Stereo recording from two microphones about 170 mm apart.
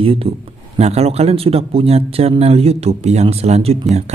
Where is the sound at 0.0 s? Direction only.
35° right (ahead or behind).